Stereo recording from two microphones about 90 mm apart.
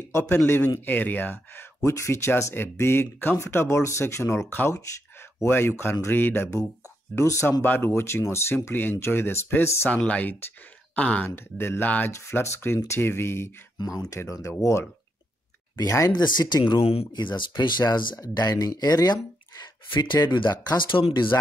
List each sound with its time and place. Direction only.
0.7 s speech: 20° left (ahead or behind)
9.8 s speech: 15° left (ahead or behind)
11.2 s speech: 25° left (ahead or behind)
12.1 s speech: 30° left (ahead or behind)
16.1 s speech: 55° left (ahead or behind)